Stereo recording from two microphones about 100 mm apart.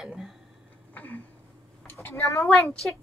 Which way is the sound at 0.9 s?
15° left (ahead or behind).